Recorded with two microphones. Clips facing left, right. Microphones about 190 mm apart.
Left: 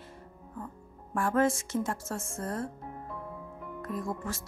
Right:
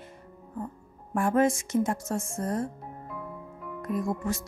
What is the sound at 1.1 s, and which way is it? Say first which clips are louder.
Speech: right 3 dB; 15° right (ahead or behind).